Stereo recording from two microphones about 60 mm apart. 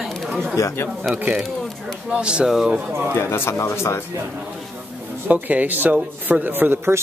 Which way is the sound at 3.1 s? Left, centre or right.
Left.